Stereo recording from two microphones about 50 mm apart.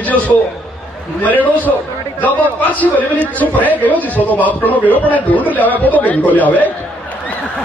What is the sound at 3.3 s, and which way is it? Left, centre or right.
A man's voice, left.